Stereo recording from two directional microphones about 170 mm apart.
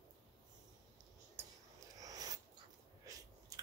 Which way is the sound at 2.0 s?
20° right (ahead or behind).